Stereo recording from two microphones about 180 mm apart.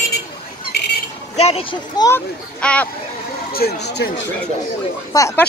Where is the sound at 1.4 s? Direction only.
35° left (ahead or behind).